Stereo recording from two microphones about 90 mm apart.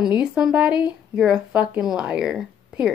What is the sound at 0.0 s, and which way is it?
A woman's voice, 10° right (ahead or behind).